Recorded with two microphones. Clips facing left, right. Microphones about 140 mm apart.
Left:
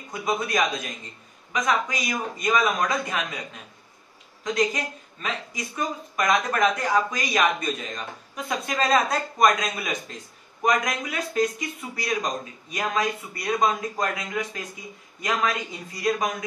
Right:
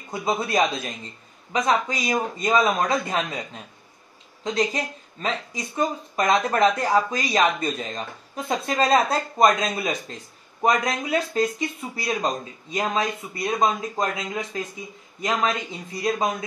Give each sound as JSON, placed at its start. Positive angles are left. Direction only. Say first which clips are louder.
{"t": 0.1, "sound": "a man's voice", "louder": "right 2 dB", "side_deg": -30}
{"t": 4.4, "sound": "speech", "louder": "even", "side_deg": -30}